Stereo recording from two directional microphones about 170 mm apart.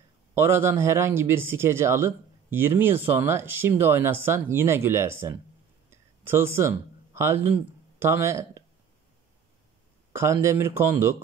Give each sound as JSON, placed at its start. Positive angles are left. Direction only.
{"t": 0.3, "sound": "speech", "side_deg": -15}
{"t": 5.9, "sound": "a sound", "side_deg": -15}
{"t": 7.2, "sound": "speech", "side_deg": -15}
{"t": 10.1, "sound": "speech", "side_deg": -15}